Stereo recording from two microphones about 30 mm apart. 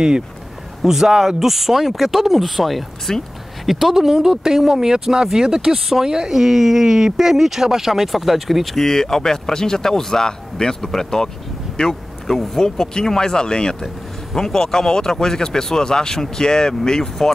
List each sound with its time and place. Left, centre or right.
0.8 s speech: centre
3.1 s speech: centre
3.6 s speech: centre
8.7 s speech: centre